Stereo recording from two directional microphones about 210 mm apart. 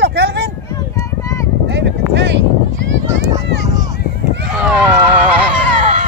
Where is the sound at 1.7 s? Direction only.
55° right (ahead or behind).